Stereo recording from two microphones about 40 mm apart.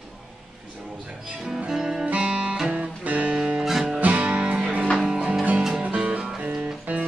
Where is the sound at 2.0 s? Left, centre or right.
Right.